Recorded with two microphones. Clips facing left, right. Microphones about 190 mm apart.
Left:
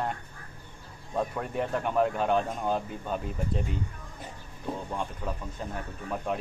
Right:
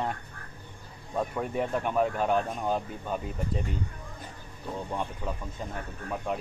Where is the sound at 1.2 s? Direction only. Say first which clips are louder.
Right 1 dB; centre (ahead or behind).